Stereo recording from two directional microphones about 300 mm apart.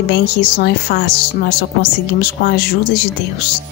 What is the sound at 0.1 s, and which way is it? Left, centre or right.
A woman's voice, left.